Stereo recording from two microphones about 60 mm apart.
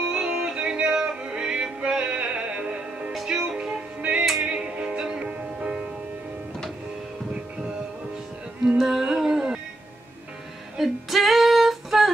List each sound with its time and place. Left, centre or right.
0.1 s music: centre
8.7 s music: centre
10.8 s female singing: centre